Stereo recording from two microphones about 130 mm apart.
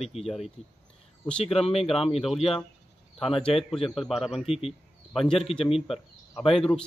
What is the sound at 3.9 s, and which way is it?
A man's voice, centre (ahead or behind).